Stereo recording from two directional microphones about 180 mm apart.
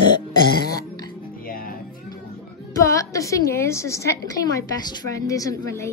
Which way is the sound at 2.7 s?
15° left (ahead or behind).